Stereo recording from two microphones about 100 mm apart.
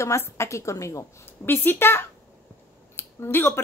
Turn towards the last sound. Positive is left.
turn(degrees=25)  # may be behind; listen again after turning